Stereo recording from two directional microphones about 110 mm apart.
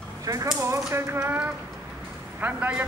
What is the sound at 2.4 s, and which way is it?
Speech, 15° right (ahead or behind).